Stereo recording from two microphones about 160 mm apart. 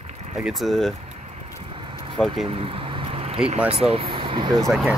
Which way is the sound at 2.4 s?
35° right (ahead or behind).